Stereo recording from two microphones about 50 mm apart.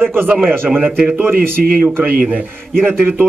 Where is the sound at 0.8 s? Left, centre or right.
Right.